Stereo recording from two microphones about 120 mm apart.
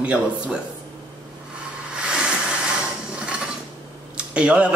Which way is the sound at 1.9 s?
10° right (ahead or behind).